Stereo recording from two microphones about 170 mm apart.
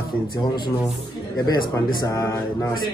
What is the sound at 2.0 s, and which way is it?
Speech, 20° left (ahead or behind).